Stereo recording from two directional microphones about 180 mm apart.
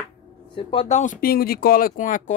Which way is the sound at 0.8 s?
40° left (ahead or behind).